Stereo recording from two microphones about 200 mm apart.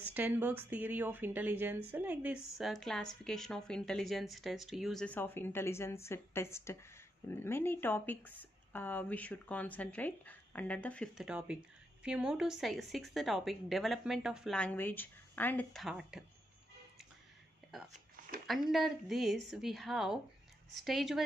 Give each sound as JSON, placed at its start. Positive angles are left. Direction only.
{"t": 0.0, "sound": "speech", "side_deg": -10}
{"t": 11.2, "sound": "speech", "side_deg": -5}
{"t": 17.9, "sound": "a sound", "side_deg": -45}
{"t": 18.5, "sound": "speech", "side_deg": 0}